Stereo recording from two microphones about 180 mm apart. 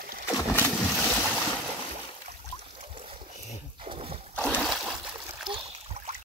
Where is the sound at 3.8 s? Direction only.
30° right (ahead or behind).